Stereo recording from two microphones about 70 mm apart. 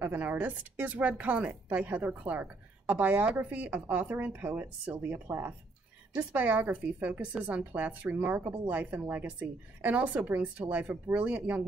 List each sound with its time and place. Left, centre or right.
0.0 s a woman's voice: right